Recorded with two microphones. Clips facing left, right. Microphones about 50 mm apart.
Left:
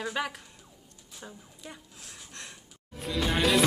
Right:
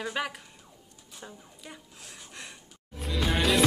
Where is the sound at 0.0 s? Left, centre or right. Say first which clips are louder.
Even; centre.